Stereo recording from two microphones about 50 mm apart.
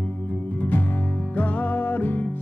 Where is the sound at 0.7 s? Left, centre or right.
Left.